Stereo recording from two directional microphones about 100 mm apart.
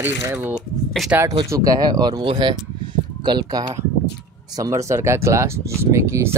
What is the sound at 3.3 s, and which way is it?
Speech, 40° right (ahead or behind).